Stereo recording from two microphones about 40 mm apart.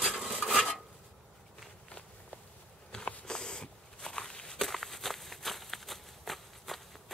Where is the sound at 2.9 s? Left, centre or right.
Centre.